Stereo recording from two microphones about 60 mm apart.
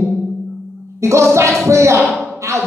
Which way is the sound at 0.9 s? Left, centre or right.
Right.